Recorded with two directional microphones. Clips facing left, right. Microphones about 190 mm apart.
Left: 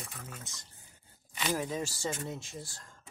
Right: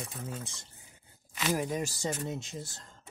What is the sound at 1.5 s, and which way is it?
Speech, 15° right (ahead or behind).